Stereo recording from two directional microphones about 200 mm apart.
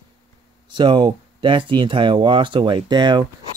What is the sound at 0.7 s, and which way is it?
Speech, 25° right (ahead or behind).